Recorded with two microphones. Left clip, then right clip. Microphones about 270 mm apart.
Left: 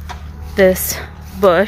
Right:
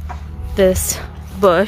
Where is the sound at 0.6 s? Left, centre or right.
Centre.